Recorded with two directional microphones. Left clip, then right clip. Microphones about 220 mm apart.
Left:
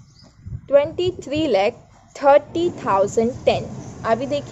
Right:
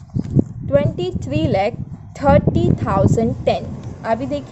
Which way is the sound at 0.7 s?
25° right (ahead or behind).